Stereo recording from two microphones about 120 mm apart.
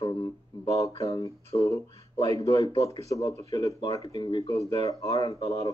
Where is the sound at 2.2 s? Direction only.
30° left (ahead or behind).